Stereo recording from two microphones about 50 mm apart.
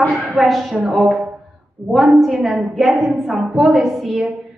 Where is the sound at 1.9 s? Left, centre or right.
Centre.